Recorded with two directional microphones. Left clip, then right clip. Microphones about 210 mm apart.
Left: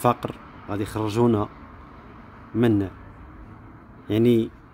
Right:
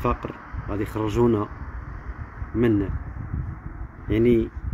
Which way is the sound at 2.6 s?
15° left (ahead or behind).